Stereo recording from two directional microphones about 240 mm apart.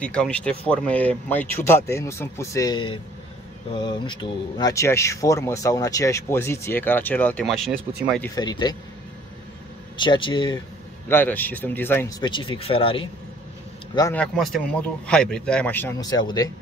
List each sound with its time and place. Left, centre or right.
0.0 s speech: centre
8.4 s speech: centre
9.9 s speech: centre
11.1 s speech: centre
13.9 s a man's voice: centre